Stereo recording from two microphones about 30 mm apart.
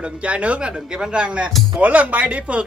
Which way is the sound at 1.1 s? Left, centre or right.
Right.